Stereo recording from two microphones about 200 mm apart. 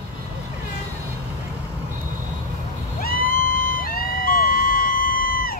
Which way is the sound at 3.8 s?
45° left (ahead or behind).